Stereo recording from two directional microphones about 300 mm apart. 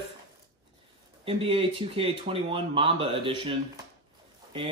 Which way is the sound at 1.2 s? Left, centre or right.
Centre.